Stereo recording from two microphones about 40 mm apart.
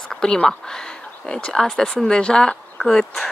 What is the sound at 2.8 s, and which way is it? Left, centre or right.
Speech, centre.